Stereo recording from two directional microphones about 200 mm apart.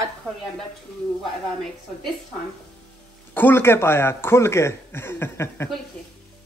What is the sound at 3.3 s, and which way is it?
Speech, 10° left (ahead or behind).